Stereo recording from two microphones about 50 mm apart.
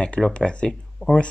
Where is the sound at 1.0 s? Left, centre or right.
Left.